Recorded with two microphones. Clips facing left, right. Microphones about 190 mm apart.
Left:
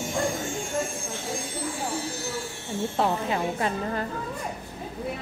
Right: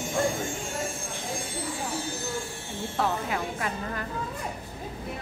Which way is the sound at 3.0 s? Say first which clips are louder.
Left 2 dB; 30° left (ahead or behind).